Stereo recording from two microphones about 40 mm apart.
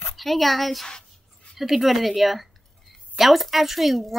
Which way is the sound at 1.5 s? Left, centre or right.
Centre.